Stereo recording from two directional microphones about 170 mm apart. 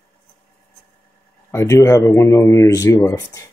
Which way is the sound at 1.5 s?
15° left (ahead or behind).